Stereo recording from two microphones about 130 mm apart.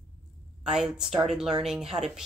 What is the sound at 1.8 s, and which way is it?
Speech, 55° right (ahead or behind).